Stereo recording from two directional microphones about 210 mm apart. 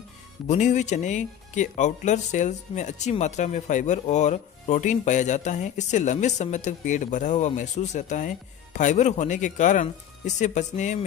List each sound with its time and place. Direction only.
0.5 s speech: 35° left (ahead or behind)